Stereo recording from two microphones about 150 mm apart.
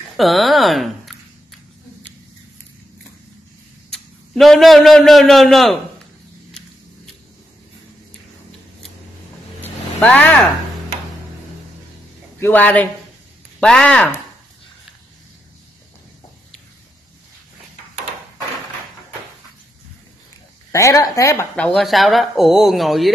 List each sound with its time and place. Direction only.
0.2 s speech: centre (ahead or behind)
3.9 s a man's voice: centre (ahead or behind)
9.6 s vehicle: 5° left (ahead or behind)
12.4 s speech: 15° left (ahead or behind)
20.7 s speech: 20° left (ahead or behind)
21.5 s speech: 5° left (ahead or behind)